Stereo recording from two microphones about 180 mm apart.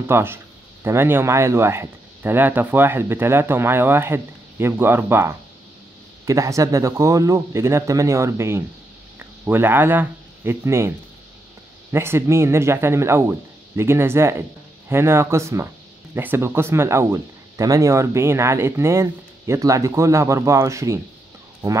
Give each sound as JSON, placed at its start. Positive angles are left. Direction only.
{"t": 0.0, "sound": "speech", "side_deg": -15}
{"t": 11.9, "sound": "speech", "side_deg": -15}